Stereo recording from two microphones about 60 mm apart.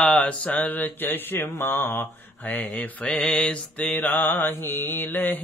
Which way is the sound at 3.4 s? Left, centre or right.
Centre.